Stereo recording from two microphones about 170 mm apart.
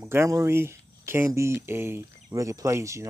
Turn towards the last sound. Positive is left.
turn(degrees=-15)  # may be behind; listen again after turning